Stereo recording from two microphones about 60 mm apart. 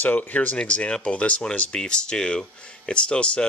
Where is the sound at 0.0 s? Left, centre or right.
Left.